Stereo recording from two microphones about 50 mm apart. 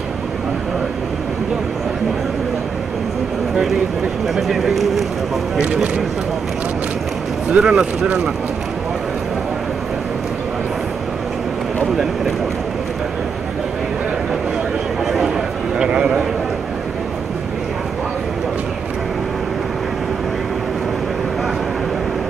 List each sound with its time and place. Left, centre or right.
4.4 s speech: centre
7.5 s speech: centre
15.8 s a sound: centre